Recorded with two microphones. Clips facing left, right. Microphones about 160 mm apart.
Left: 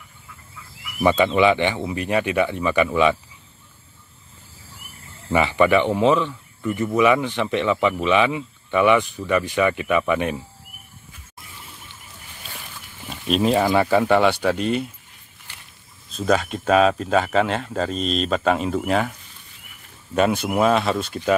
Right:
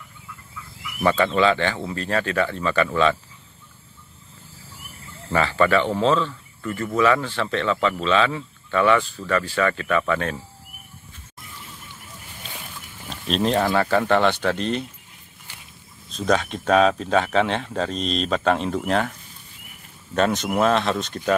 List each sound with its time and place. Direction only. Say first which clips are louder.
1.0 s speech: left 2 dB; 15° left (ahead or behind)
5.3 s speech: left 2 dB; 15° left (ahead or behind)
13.0 s a sound: left 3 dB; 5° left (ahead or behind)
13.7 s speech: left 2 dB; 10° left (ahead or behind)
16.1 s speech: left 1 dB; 5° left (ahead or behind)
20.2 s speech: left 1 dB; 5° left (ahead or behind)